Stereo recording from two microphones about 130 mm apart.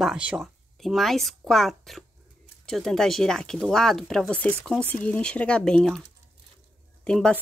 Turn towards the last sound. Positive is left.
turn(degrees=5)  # may be behind; listen again after turning